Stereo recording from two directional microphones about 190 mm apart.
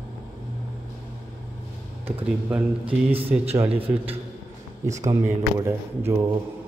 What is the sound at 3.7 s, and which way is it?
Speech, 30° right (ahead or behind).